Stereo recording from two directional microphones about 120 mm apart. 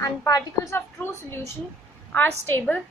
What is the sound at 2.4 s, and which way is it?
Speech, 20° left (ahead or behind).